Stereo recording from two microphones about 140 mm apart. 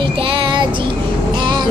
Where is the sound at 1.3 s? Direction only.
35° right (ahead or behind).